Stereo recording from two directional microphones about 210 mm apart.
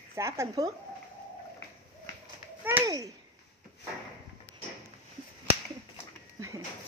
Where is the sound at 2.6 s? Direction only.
15° right (ahead or behind).